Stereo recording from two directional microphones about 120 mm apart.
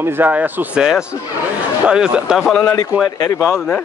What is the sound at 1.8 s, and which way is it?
Speech, 5° right (ahead or behind).